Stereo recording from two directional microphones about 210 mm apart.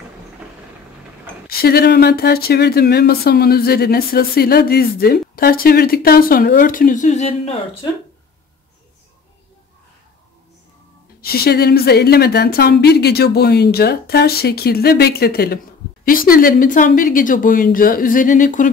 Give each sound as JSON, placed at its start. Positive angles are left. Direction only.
{"t": 1.5, "sound": "speech", "side_deg": 45}
{"t": 11.1, "sound": "speech", "side_deg": 45}